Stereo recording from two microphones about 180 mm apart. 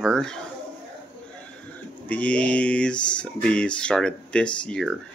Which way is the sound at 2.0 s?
5° left (ahead or behind).